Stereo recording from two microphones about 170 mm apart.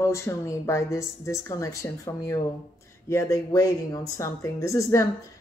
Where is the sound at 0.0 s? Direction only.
15° left (ahead or behind).